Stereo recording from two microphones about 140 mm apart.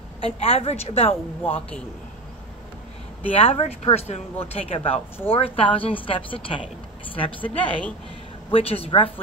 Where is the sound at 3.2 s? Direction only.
40° left (ahead or behind).